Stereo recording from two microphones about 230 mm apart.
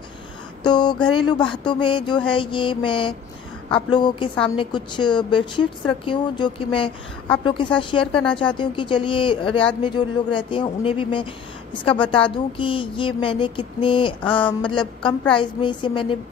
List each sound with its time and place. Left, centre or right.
0.7 s a woman's voice: centre